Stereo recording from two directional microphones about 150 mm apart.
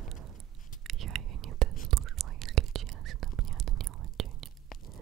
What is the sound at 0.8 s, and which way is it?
Whispering, centre (ahead or behind).